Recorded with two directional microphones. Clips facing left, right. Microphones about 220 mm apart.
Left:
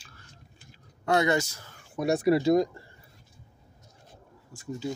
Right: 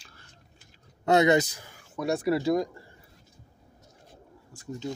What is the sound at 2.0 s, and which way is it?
Speech, 15° left (ahead or behind).